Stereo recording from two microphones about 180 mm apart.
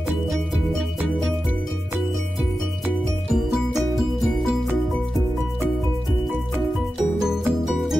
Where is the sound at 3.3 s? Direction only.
Centre (ahead or behind).